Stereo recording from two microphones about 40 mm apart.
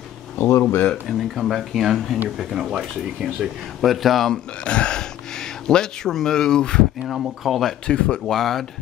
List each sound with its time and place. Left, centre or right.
0.4 s speech: left
1.0 s speech: centre
3.8 s speech: centre
4.6 s speech: left
7.0 s speech: centre
7.8 s speech: left
8.3 s speech: centre